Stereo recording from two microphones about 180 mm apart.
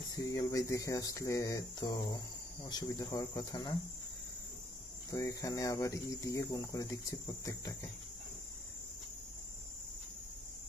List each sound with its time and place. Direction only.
0.1 s speech: 20° left (ahead or behind)
5.1 s speech: 20° left (ahead or behind)